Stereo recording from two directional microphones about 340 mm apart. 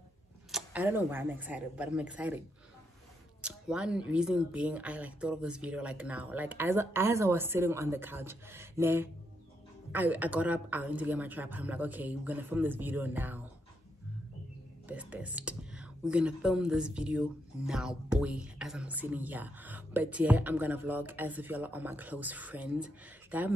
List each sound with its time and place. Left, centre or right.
0.5 s speech: centre
3.4 s speech: centre
14.9 s speech: centre